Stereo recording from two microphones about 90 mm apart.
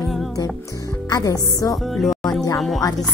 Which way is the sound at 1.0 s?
40° left (ahead or behind).